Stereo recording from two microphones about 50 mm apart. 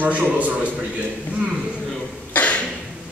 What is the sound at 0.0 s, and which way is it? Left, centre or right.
Speech, right.